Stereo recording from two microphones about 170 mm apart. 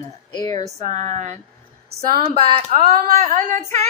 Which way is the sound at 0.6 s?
40° right (ahead or behind).